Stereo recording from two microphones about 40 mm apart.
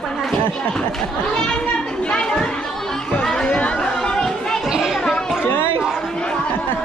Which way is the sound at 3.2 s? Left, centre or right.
Centre.